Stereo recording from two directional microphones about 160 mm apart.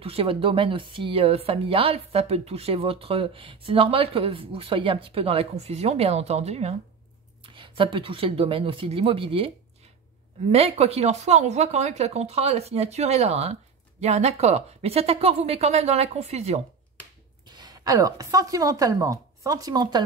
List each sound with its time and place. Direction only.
0.0 s speech: 35° right (ahead or behind)
10.5 s speech: 40° right (ahead or behind)
17.6 s a woman's voice: 25° right (ahead or behind)